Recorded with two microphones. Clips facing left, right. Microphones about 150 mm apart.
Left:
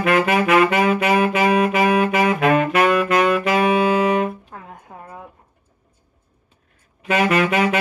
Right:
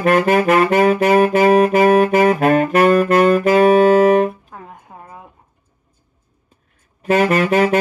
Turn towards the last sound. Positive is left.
turn(degrees=-40)  # may be behind; listen again after turning